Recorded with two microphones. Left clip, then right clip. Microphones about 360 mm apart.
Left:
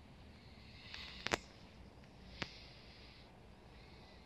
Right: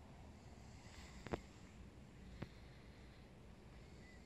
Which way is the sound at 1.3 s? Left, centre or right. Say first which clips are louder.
Left 9 dB; left.